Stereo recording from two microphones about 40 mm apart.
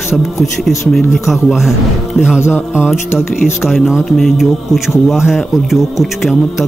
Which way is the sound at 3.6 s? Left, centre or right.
Centre.